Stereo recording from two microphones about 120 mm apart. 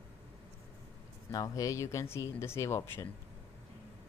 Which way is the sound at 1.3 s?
30° left (ahead or behind).